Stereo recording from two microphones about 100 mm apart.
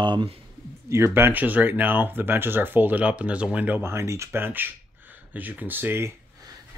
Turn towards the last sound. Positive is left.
turn(degrees=-25)  # may be behind; listen again after turning